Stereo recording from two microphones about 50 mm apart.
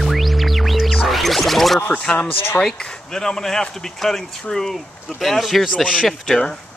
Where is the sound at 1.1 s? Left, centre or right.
Centre.